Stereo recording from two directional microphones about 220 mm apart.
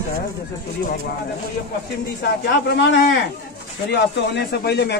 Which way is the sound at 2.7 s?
50° left (ahead or behind).